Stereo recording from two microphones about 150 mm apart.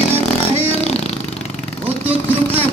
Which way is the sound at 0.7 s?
45° left (ahead or behind).